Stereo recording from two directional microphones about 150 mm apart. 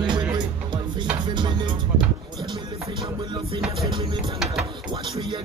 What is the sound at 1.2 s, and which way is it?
Music, 30° right (ahead or behind).